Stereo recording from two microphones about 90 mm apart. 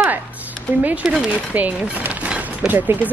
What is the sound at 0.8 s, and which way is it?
Speech, 15° right (ahead or behind).